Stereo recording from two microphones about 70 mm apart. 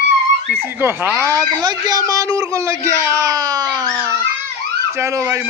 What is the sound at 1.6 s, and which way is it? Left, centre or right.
A man's voice, right.